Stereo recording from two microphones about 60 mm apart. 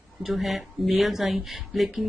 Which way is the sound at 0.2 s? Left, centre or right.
Centre.